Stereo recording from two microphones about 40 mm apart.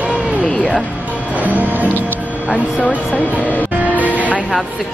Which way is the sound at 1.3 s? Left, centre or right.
Right.